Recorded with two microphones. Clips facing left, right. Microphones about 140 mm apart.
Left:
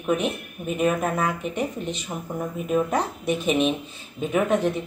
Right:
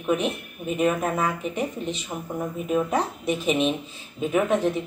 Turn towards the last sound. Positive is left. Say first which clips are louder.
# even
turn(degrees=0)  # may be behind; listen again after turning